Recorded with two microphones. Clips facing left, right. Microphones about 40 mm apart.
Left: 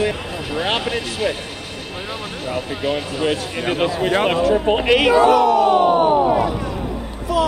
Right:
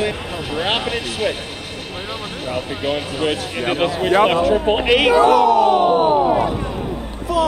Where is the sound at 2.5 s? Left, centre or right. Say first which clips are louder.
Even; right.